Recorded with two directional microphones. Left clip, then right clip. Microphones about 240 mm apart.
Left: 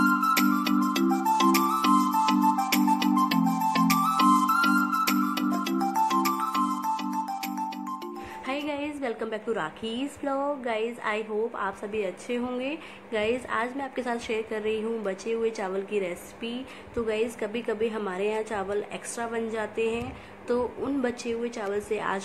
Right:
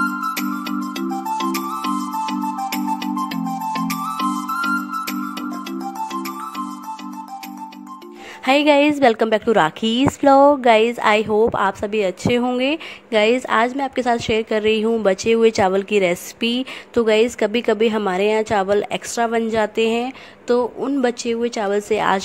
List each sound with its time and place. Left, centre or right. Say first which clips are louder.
0.3 s music: even; centre
8.5 s a woman's voice: right 18 dB; right